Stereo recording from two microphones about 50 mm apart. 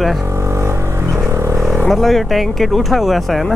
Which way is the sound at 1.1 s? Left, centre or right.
Right.